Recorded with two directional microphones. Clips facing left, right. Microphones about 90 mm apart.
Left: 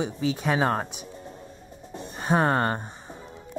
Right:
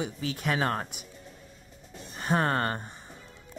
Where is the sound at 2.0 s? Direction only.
20° left (ahead or behind).